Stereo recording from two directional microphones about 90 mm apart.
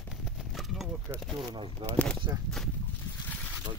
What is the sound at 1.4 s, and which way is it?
Speech, 70° right (ahead or behind).